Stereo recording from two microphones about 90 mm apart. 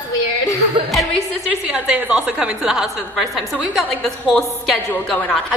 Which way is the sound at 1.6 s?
10° right (ahead or behind).